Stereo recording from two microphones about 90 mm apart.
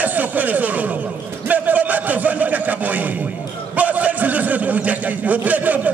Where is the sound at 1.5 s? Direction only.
20° right (ahead or behind).